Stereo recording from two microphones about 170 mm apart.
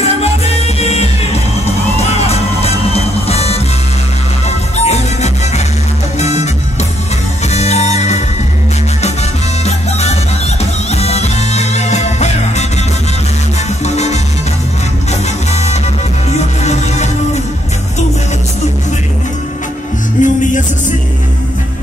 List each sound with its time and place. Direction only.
0.0 s music: 40° left (ahead or behind)
9.7 s music: 40° left (ahead or behind)
13.8 s music: 40° left (ahead or behind)
15.5 s music: 40° left (ahead or behind)
20.2 s music: 50° left (ahead or behind)